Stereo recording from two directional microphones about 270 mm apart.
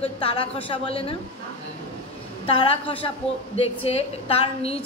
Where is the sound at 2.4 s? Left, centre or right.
Left.